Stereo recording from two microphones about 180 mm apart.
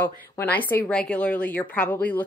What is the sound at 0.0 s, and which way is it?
Speech, 10° left (ahead or behind).